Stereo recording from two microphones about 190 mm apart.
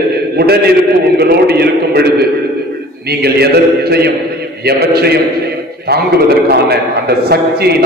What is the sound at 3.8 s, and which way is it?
A man's voice, 55° right (ahead or behind).